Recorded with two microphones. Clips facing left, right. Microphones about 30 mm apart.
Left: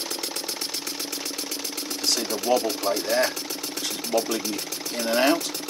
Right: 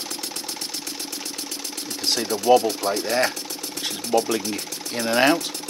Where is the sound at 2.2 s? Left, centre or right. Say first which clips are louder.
Right 7 dB; centre.